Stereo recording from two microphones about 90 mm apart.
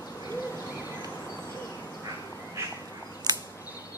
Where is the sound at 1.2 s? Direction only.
35° left (ahead or behind).